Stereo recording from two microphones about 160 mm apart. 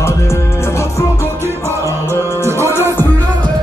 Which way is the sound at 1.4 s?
15° right (ahead or behind).